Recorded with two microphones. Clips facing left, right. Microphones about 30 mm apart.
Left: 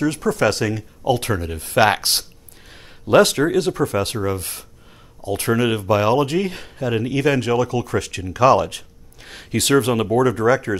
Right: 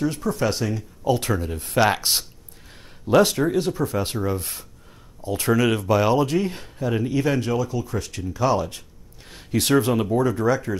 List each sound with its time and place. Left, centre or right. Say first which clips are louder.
0.0 s speech: left 5 dB; left
2.7 s a sound: left 3 dB; left
3.5 s speech: left 4 dB; left
7.5 s speech: left 5 dB; left